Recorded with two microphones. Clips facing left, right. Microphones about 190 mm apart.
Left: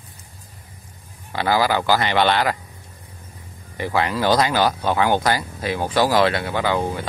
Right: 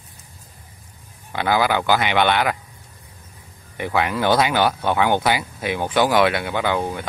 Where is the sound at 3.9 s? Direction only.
5° right (ahead or behind).